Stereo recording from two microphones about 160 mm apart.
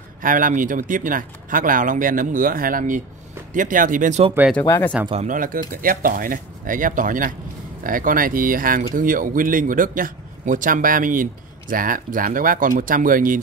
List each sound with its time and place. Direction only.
0.2 s speech: 60° right (ahead or behind)
4.6 s speech: 15° left (ahead or behind)
5.2 s speech: 55° right (ahead or behind)